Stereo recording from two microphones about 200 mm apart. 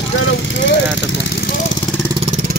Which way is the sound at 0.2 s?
75° left (ahead or behind).